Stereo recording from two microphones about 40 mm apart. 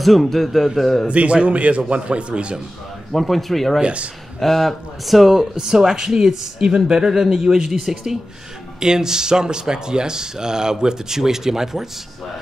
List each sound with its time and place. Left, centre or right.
0.0 s a man's voice: centre
1.0 s a man's voice: right
3.1 s speech: centre
3.8 s a man's voice: right
4.4 s speech: centre